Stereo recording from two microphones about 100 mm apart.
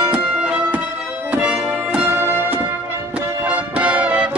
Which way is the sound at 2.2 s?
20° right (ahead or behind).